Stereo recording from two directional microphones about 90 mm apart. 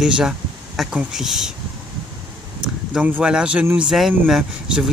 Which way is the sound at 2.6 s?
15° right (ahead or behind).